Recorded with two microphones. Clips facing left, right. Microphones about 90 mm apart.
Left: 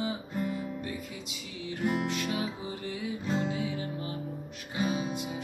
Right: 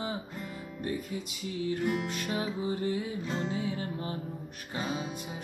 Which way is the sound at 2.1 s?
35° right (ahead or behind).